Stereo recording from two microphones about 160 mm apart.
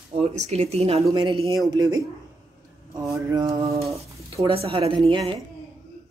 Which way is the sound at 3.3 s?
25° right (ahead or behind).